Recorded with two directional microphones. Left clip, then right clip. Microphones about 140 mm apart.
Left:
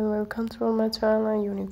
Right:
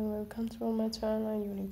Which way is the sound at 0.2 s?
30° left (ahead or behind).